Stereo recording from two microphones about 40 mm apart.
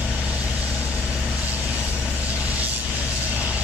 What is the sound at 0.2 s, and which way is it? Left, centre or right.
Vehicle, right.